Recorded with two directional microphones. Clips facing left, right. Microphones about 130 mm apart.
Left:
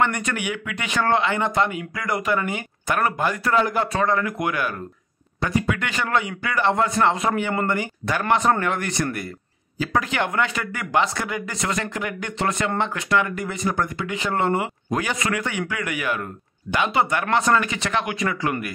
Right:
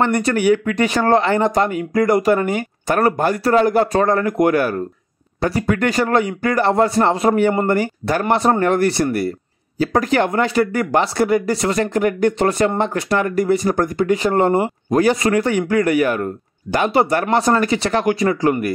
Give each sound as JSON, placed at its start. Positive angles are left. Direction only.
{"t": 0.0, "sound": "speech", "side_deg": -35}